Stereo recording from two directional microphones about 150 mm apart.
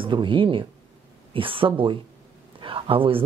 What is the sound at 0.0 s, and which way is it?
Speech, 35° right (ahead or behind).